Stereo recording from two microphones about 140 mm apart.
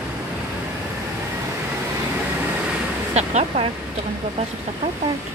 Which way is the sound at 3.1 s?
50° right (ahead or behind).